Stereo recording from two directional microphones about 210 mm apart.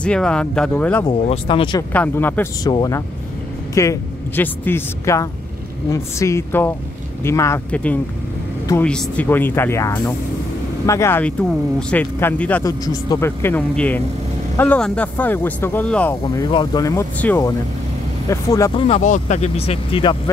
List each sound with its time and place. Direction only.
0.0 s speech: 5° left (ahead or behind)
1.0 s speech: 25° left (ahead or behind)
1.9 s speech: 10° left (ahead or behind)
12.8 s speech: 15° left (ahead or behind)
16.4 s speech: 20° left (ahead or behind)
18.9 s speech: 35° left (ahead or behind)